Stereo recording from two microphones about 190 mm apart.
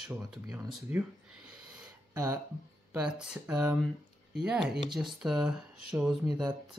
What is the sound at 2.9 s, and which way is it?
Speech, 5° right (ahead or behind).